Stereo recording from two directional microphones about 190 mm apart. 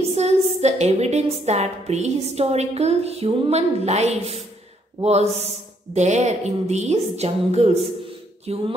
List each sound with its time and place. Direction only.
0.0 s a woman's voice: 35° right (ahead or behind)